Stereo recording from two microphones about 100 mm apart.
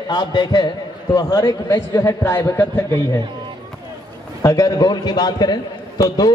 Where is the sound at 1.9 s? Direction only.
25° left (ahead or behind).